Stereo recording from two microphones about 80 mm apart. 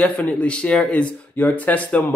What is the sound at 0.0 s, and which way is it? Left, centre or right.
Speech, centre.